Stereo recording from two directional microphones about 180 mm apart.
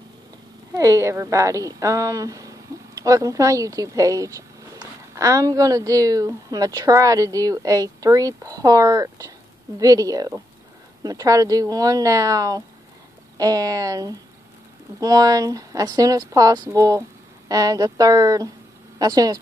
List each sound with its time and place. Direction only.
0.7 s a woman's voice: 20° right (ahead or behind)